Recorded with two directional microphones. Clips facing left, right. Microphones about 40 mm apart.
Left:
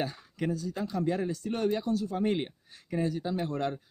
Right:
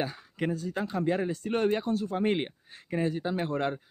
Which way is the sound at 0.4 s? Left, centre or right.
Right.